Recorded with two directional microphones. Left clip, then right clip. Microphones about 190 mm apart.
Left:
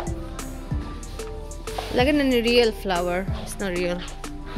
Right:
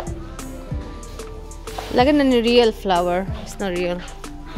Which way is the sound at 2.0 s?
25° right (ahead or behind).